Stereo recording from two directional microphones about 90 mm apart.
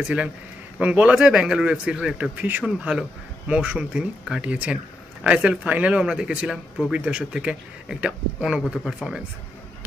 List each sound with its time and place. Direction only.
0.7 s speech: 15° right (ahead or behind)